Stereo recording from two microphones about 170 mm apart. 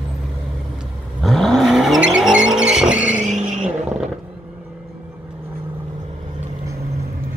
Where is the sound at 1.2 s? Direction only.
Centre (ahead or behind).